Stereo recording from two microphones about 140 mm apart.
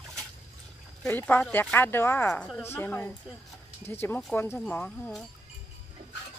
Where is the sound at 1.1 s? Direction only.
15° left (ahead or behind).